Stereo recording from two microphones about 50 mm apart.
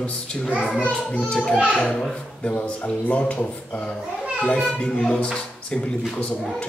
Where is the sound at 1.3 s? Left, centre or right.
Centre.